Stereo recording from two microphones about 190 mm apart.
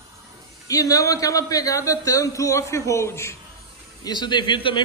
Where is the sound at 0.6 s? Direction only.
20° left (ahead or behind).